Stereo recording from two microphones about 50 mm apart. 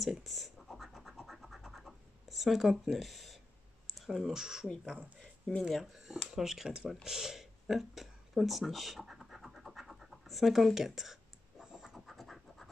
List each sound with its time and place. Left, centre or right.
0.0 s scratch: centre
3.8 s speech: centre
5.6 s a sound: centre
12.1 s scratch: centre